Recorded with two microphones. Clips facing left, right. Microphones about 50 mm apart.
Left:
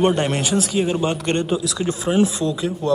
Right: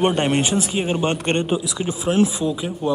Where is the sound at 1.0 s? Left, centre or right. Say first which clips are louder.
Even; right.